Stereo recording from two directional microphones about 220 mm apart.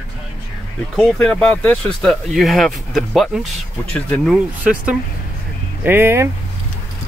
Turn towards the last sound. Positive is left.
turn(degrees=-10)  # may be behind; listen again after turning